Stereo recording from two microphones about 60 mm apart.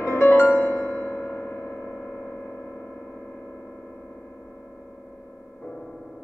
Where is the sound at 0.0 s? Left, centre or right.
Left.